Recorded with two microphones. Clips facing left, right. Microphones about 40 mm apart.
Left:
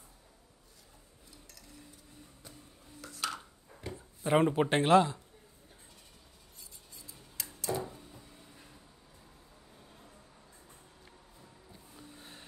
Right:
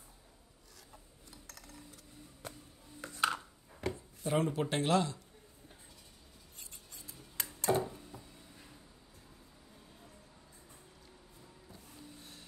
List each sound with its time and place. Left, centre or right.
2.4 s music: right
3.0 s a sound: right
3.8 s a sound: right
4.2 s speech: left
7.7 s music: right
12.2 s music: left